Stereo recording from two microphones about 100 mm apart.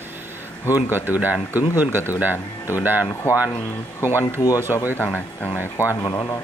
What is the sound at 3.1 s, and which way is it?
Speech, 25° left (ahead or behind).